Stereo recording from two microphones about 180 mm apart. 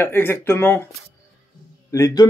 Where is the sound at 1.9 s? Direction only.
20° left (ahead or behind).